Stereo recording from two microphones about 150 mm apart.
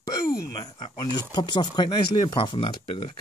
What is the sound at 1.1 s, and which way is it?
Speech, 30° left (ahead or behind).